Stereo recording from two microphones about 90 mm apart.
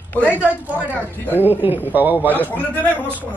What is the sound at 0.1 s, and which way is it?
Speech, 20° left (ahead or behind).